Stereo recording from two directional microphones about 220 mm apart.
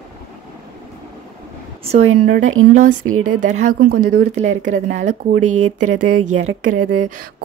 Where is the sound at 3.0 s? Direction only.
75° right (ahead or behind).